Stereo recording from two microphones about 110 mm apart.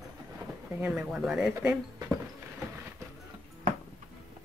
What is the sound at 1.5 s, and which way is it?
Speech, 25° right (ahead or behind).